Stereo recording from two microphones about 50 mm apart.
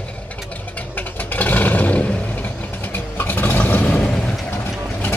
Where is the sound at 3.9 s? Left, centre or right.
Left.